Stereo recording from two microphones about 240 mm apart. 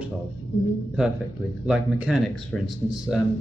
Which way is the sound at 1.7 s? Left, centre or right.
Centre.